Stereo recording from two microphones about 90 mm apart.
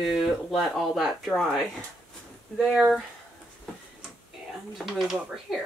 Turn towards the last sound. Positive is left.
turn(degrees=0)  # may be behind; listen again after turning